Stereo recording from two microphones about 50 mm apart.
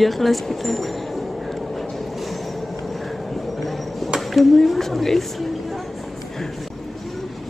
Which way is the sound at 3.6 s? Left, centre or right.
Centre.